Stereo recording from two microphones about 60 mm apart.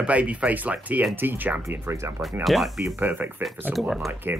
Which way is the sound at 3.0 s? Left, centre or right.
Right.